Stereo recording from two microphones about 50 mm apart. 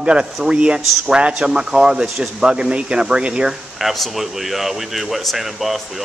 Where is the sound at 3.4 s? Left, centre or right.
Centre.